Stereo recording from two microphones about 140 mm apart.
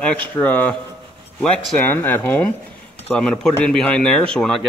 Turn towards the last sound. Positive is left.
turn(degrees=5)  # may be behind; listen again after turning